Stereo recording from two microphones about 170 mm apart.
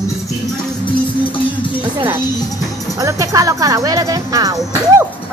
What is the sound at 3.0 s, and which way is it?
Speech, 20° right (ahead or behind).